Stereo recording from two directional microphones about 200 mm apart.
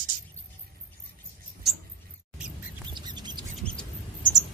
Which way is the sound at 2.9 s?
20° right (ahead or behind).